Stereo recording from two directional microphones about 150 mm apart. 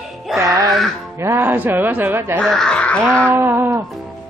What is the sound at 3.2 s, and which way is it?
Speech, 15° right (ahead or behind).